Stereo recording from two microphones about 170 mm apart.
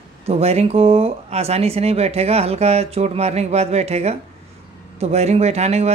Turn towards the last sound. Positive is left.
turn(degrees=-40)  # may be behind; listen again after turning